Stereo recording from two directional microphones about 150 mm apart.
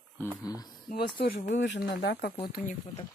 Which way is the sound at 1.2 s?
90° left.